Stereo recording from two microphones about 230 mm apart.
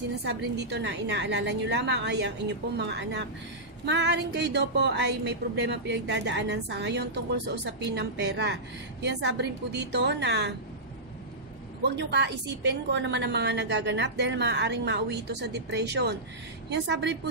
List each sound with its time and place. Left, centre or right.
0.2 s a woman's voice: right
11.8 s a woman's voice: right